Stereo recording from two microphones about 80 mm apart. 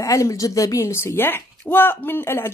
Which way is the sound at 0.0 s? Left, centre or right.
Left.